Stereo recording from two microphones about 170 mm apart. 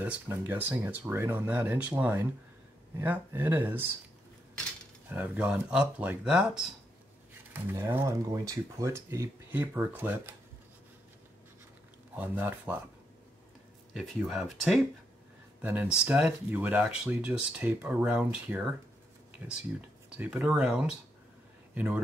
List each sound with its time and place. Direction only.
0.5 s speech: 10° right (ahead or behind)
5.1 s speech: 10° right (ahead or behind)
7.6 s speech: 15° right (ahead or behind)
12.2 s speech: 10° right (ahead or behind)
13.9 s speech: centre (ahead or behind)